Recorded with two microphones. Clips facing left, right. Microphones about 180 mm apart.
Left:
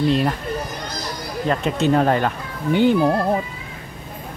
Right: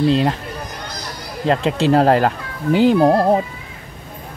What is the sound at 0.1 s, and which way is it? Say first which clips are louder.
Speech: right 3 dB; 25° right (ahead or behind).